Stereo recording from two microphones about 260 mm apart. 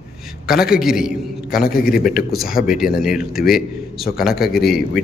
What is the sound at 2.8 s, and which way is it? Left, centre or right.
Speech, centre.